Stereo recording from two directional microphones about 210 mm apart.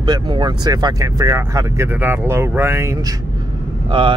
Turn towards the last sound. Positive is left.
turn(degrees=-25)  # may be behind; listen again after turning